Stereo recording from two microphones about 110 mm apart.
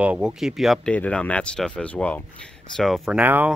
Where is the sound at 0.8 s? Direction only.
10° left (ahead or behind).